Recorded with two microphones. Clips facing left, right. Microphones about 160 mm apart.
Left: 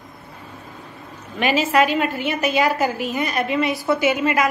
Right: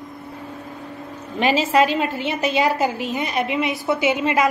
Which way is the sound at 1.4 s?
30° right (ahead or behind).